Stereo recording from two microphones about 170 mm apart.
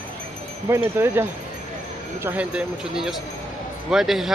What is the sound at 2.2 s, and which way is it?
Speech, 10° right (ahead or behind).